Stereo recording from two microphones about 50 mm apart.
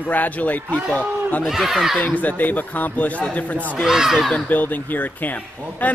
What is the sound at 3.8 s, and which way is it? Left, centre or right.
Speech, centre.